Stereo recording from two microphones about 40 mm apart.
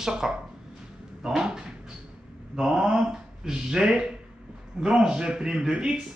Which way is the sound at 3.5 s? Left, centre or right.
Centre.